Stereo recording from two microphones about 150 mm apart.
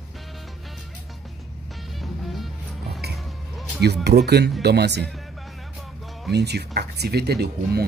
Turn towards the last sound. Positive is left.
turn(degrees=-90)